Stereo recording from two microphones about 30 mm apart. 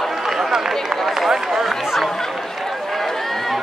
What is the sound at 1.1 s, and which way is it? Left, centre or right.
Speech, centre.